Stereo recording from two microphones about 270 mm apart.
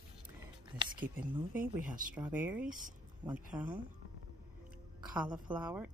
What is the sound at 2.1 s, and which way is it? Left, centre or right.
A woman's voice, centre.